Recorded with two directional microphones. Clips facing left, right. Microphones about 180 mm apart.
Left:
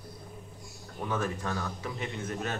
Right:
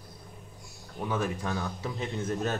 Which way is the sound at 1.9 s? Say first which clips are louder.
Right 6 dB; 35° right (ahead or behind).